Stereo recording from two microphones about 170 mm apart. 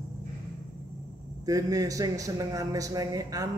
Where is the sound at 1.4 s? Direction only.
20° right (ahead or behind).